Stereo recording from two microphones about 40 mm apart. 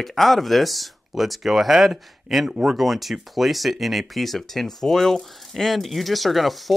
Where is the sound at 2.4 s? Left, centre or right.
Right.